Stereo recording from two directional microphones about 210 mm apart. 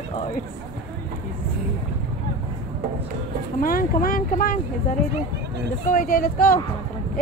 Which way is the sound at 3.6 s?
40° left (ahead or behind).